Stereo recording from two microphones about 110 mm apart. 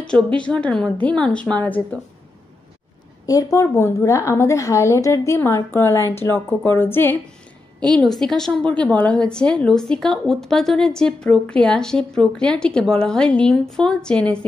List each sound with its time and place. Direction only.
0.0 s a woman's voice: 10° left (ahead or behind)
3.3 s a woman's voice: 30° left (ahead or behind)
7.9 s a woman's voice: 5° left (ahead or behind)